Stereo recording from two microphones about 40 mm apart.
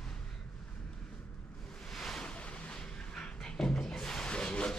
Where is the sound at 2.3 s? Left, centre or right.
Left; by 4.3 s centre.